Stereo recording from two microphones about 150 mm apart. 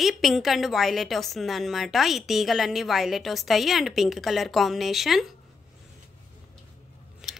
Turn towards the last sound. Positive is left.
turn(degrees=-5)  # may be behind; listen again after turning